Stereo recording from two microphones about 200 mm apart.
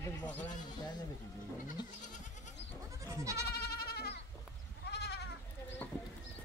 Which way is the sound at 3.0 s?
15° right (ahead or behind).